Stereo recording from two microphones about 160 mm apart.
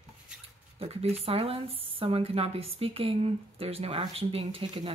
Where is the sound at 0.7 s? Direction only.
40° right (ahead or behind).